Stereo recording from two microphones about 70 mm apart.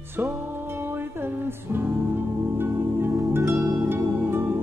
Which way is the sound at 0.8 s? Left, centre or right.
Right.